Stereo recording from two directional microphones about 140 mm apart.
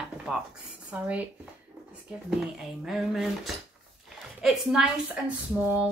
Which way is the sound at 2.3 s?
Centre (ahead or behind).